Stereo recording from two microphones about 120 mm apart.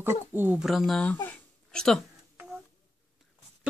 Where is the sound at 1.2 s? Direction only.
10° left (ahead or behind).